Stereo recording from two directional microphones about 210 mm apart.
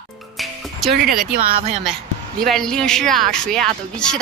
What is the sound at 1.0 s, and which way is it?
Speech, 45° right (ahead or behind).